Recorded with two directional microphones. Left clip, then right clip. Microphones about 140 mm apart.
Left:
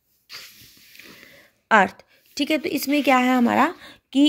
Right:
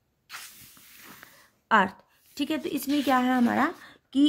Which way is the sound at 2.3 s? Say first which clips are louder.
Left 7 dB; 20° left (ahead or behind).